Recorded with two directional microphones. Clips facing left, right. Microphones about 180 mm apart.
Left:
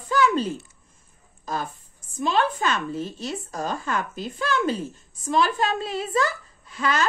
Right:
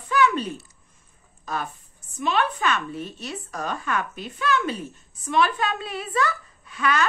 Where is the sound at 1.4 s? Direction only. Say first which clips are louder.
Left 1 dB; 35° left (ahead or behind).